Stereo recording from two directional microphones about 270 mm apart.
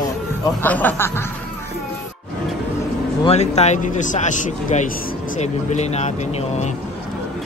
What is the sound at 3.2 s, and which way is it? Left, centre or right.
A man's voice, left.